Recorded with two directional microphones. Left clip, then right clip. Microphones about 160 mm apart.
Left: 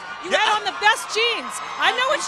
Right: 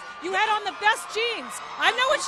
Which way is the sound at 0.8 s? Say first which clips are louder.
Left 6 dB; 15° right (ahead or behind).